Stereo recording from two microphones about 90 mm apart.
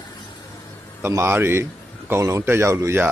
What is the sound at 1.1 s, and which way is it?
Speech, 30° right (ahead or behind).